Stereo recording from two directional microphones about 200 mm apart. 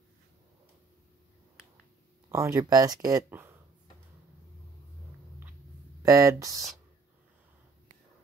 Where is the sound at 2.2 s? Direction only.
15° right (ahead or behind).